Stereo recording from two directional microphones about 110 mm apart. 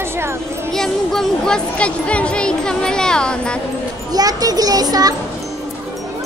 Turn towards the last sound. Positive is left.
turn(degrees=-35)  # may be behind; listen again after turning